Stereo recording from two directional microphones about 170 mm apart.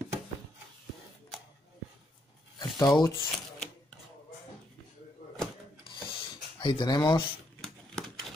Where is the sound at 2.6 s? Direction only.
25° left (ahead or behind).